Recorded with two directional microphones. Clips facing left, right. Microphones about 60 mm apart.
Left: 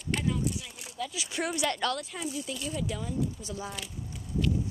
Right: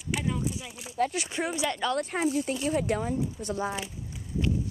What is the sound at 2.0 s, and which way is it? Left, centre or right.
Speech, right.